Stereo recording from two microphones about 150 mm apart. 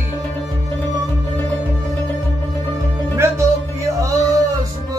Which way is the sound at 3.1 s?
20° right (ahead or behind).